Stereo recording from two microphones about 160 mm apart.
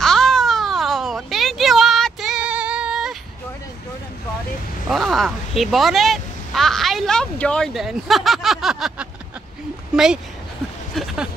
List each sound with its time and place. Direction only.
0.0 s baby cry: 5° left (ahead or behind)
4.8 s speech: centre (ahead or behind)